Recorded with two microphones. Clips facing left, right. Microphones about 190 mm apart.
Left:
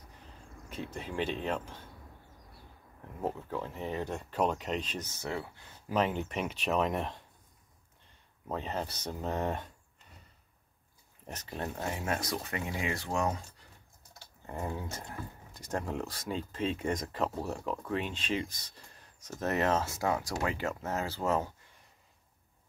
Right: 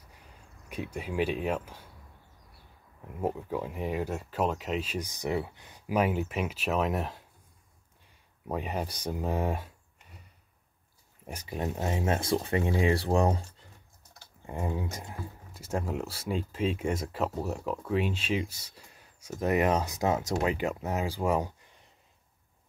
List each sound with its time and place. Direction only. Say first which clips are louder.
0.7 s speech: right 4 dB; 10° right (ahead or behind)
3.2 s speech: right 4 dB; 10° right (ahead or behind)
8.5 s speech: right 3 dB; 10° right (ahead or behind)
11.2 s speech: right 4 dB; 10° right (ahead or behind); by 13.4 s 35° right (ahead or behind)
14.4 s speech: right 4 dB; 15° right (ahead or behind)